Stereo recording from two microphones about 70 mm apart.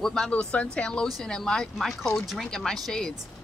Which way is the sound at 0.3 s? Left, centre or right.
Centre.